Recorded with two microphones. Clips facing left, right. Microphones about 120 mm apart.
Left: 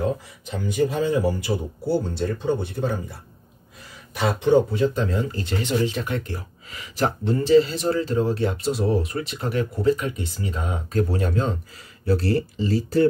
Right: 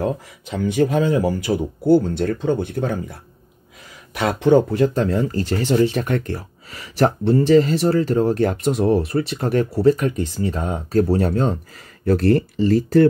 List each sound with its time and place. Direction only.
0.5 s speech: 65° right (ahead or behind)
4.9 s speech: 40° right (ahead or behind)